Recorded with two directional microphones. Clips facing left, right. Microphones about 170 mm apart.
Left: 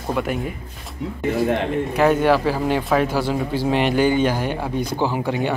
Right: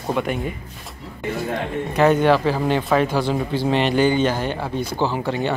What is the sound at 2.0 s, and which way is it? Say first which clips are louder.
Speech: right 1 dB; 5° left (ahead or behind).